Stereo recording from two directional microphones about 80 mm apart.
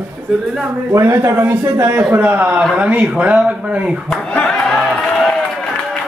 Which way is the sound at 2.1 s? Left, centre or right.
Right.